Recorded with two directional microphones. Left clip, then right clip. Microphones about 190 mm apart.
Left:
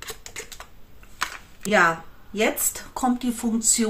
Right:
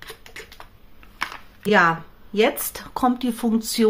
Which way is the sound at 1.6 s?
50° right (ahead or behind).